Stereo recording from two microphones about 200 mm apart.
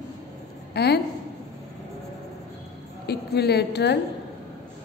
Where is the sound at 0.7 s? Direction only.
55° left (ahead or behind).